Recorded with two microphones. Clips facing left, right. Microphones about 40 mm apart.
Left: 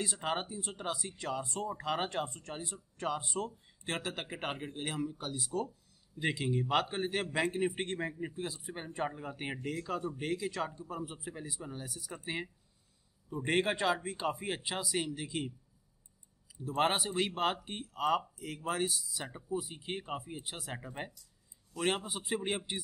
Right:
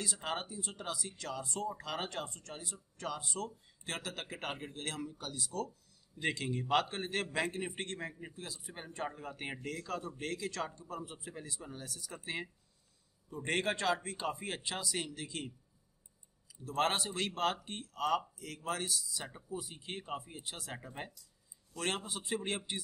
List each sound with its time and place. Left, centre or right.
0.0 s speech: left
8.1 s a man's voice: centre
8.4 s speech: left
13.3 s speech: centre